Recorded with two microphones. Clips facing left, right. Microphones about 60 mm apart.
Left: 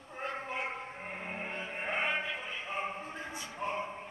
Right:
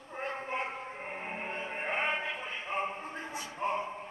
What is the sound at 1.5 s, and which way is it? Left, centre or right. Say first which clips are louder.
Music: right 2 dB; right.